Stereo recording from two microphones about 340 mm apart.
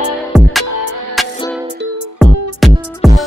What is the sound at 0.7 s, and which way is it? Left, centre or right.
Music, left.